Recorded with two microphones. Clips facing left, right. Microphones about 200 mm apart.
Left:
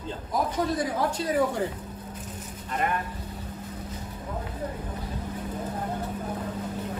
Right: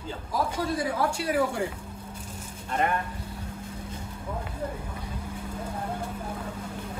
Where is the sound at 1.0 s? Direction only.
10° right (ahead or behind).